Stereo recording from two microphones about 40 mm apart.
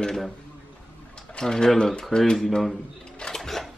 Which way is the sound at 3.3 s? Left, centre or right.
Centre.